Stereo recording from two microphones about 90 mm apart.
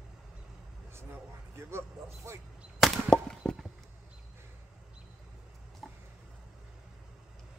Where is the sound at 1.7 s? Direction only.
30° right (ahead or behind).